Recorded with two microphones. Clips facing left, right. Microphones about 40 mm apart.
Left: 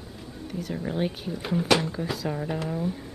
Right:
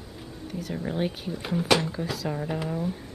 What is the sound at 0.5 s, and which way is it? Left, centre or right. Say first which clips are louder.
Speech: left 1 dB; centre.